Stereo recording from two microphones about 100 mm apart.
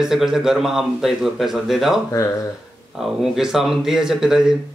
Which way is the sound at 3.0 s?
5° right (ahead or behind).